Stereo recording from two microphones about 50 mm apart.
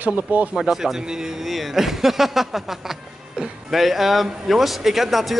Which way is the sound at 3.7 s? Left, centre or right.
Centre.